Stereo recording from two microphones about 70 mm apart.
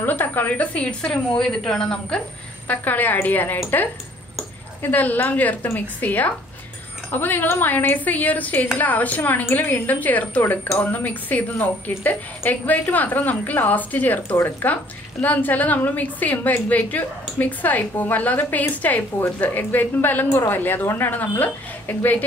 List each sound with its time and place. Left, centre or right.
0.0 s a woman's voice: left
2.7 s a woman's voice: left
4.8 s a woman's voice: left
15.2 s a woman's voice: left